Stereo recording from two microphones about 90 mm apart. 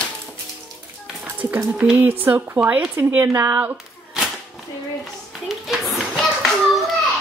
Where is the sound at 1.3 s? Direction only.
20° right (ahead or behind).